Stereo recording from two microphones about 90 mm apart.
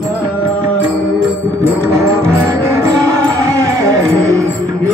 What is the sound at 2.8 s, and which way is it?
Music, 35° right (ahead or behind).